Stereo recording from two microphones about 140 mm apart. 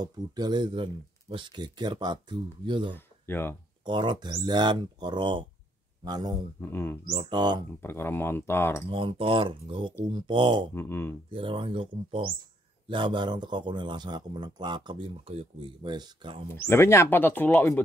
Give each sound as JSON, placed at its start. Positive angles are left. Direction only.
{"t": 0.0, "sound": "speech", "side_deg": -30}
{"t": 3.3, "sound": "speech", "side_deg": 15}
{"t": 3.8, "sound": "speech", "side_deg": -30}
{"t": 6.6, "sound": "speech", "side_deg": 15}
{"t": 7.1, "sound": "speech", "side_deg": -35}
{"t": 7.8, "sound": "speech", "side_deg": 15}
{"t": 8.8, "sound": "speech", "side_deg": -40}
{"t": 10.7, "sound": "speech", "side_deg": 15}
{"t": 11.2, "sound": "speech", "side_deg": -35}
{"t": 16.5, "sound": "speech", "side_deg": 20}